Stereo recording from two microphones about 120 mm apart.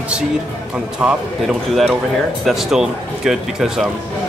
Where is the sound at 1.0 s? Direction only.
5° right (ahead or behind).